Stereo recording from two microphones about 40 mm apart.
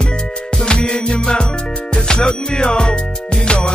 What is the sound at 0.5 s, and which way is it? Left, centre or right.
Music, centre.